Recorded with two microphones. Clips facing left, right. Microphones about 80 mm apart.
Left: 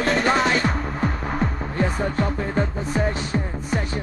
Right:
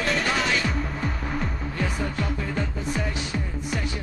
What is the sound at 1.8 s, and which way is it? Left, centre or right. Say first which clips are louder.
Music: left 6 dB; left.